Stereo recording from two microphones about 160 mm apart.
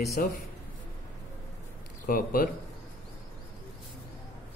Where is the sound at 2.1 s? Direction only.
65° left (ahead or behind).